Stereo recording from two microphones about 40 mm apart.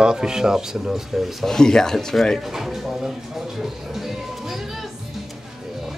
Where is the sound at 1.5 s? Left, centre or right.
Centre.